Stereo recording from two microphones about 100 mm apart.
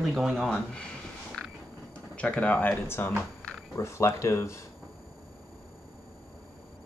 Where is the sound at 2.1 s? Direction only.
15° left (ahead or behind).